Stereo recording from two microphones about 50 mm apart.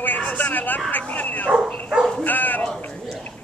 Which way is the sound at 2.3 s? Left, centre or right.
Left.